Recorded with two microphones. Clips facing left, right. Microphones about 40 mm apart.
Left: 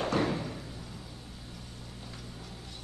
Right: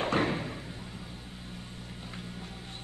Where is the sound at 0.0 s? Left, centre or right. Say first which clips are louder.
Right 1 dB; right.